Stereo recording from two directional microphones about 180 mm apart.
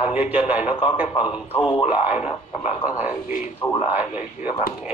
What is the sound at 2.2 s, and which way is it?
Speech, 35° left (ahead or behind).